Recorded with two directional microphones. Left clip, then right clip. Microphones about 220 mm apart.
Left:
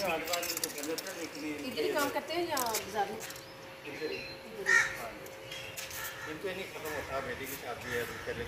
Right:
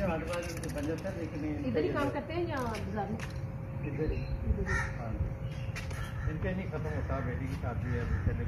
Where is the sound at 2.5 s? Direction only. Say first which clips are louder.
Left 2 dB; 25° left (ahead or behind).